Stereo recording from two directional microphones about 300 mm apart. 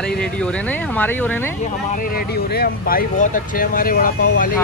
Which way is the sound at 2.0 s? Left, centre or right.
Left.